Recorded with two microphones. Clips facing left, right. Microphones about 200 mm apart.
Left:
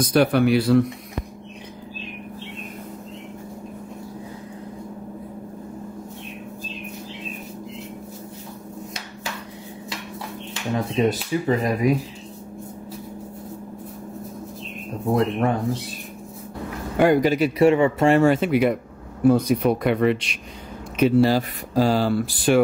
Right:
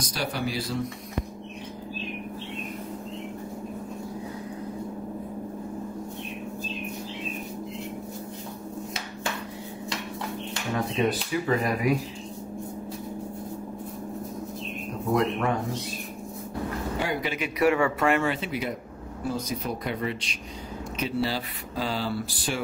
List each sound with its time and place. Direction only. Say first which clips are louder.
0.0 s speech: left 13 dB; 60° left (ahead or behind)
11.0 s speech: left 5 dB; 25° left (ahead or behind)
15.1 s speech: left 4 dB; 35° left (ahead or behind)
17.0 s speech: left 15 dB; 45° left (ahead or behind)
17.6 s speech: left 4 dB; 25° left (ahead or behind)
18.2 s speech: left 11 dB; 50° left (ahead or behind); by 20.3 s 65° left (ahead or behind)
21.0 s speech: left 11 dB; 45° left (ahead or behind)